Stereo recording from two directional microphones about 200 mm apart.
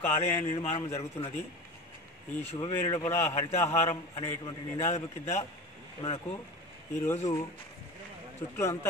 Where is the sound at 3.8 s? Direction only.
30° left (ahead or behind).